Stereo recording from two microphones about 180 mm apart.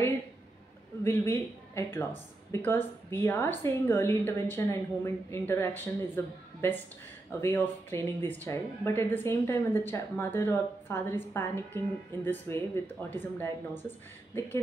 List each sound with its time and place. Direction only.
1.0 s speech: 15° left (ahead or behind)